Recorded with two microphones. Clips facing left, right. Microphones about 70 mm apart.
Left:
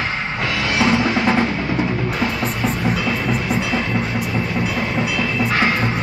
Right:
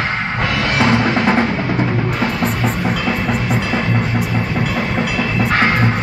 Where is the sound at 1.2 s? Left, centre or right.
Centre.